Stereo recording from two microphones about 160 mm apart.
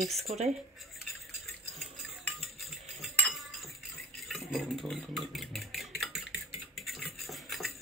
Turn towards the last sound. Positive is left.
turn(degrees=0)  # may be behind; listen again after turning